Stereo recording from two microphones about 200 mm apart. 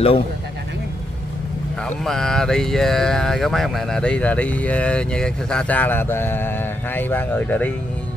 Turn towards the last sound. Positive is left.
turn(degrees=5)  # may be behind; listen again after turning